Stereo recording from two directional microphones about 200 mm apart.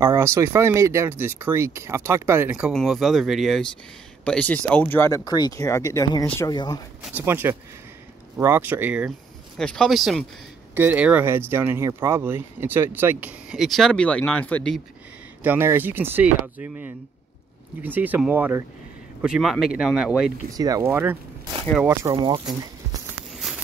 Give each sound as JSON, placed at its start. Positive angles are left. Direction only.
{"t": 0.0, "sound": "speech", "side_deg": -15}
{"t": 6.5, "sound": "speech", "side_deg": 20}
{"t": 7.0, "sound": "speech", "side_deg": -10}
{"t": 9.6, "sound": "speech", "side_deg": 5}
{"t": 15.4, "sound": "speech", "side_deg": -10}
{"t": 20.5, "sound": "speech", "side_deg": -15}